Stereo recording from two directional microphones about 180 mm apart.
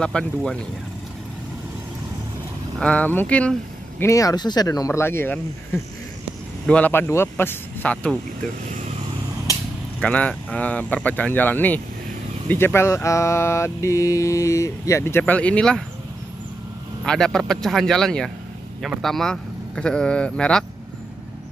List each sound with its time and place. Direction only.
0.0 s a man's voice: 5° left (ahead or behind)
2.8 s speech: 5° left (ahead or behind)
4.0 s speech: 20° left (ahead or behind)
6.6 s speech: 5° left (ahead or behind)
9.9 s speech: 10° left (ahead or behind)
17.0 s a man's voice: 5° left (ahead or behind)